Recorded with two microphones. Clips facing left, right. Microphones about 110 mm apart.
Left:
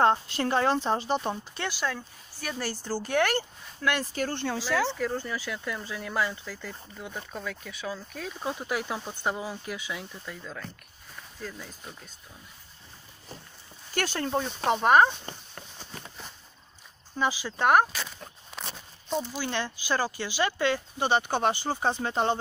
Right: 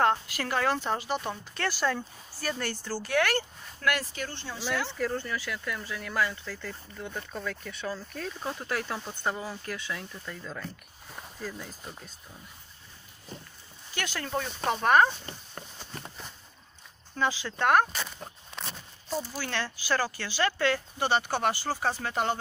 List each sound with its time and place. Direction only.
0.0 s speech: 25° left (ahead or behind)
1.9 s speech: centre (ahead or behind)
2.7 s speech: 15° left (ahead or behind)
4.1 s speech: 45° left (ahead or behind)
4.6 s speech: 5° left (ahead or behind)
5.2 s speech: 20° left (ahead or behind); by 12.1 s centre (ahead or behind)
13.9 s speech: 30° left (ahead or behind)
17.1 s speech: 10° left (ahead or behind)
18.5 s a sound: 5° left (ahead or behind)
19.1 s speech: 20° left (ahead or behind)